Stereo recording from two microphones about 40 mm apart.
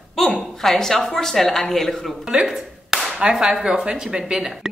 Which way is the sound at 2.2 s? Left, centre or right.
Centre.